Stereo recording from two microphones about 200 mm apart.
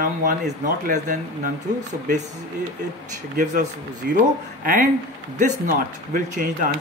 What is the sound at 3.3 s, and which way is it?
Speech, 40° right (ahead or behind).